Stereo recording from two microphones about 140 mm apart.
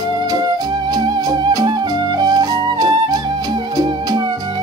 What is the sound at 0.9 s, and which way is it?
Music, 30° right (ahead or behind).